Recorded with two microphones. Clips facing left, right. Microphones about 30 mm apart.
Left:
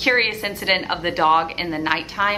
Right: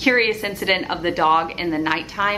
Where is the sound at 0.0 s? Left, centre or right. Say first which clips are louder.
Right 1 dB; centre.